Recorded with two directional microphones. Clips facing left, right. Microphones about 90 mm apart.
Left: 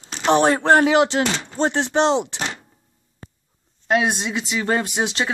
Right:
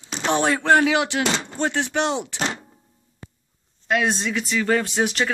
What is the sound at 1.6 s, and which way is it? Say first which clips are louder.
Speech: left 6 dB; 25° left (ahead or behind).